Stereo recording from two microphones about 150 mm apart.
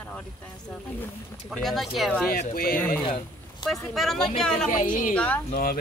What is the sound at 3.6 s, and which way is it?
Speech, centre (ahead or behind).